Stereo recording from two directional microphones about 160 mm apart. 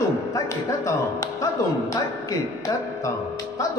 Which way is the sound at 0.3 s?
20° left (ahead or behind).